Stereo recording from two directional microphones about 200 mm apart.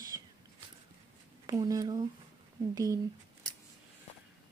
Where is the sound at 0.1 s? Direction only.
20° right (ahead or behind).